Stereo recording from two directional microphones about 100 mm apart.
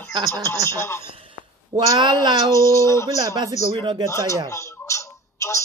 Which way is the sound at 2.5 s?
30° left (ahead or behind).